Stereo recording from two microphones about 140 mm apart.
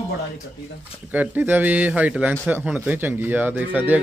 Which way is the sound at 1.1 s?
10° right (ahead or behind).